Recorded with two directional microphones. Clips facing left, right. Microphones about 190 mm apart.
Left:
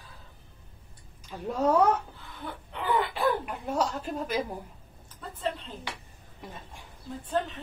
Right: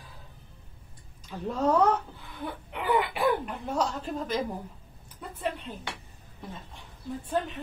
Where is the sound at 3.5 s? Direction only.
10° left (ahead or behind).